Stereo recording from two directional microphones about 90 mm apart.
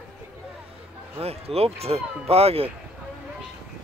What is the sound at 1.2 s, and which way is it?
Speech, 90° right.